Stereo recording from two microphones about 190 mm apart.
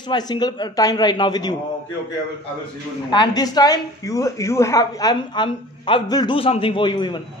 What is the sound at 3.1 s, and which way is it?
A woman's voice, 20° left (ahead or behind).